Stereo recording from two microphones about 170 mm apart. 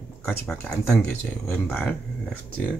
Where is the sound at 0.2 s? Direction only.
5° left (ahead or behind).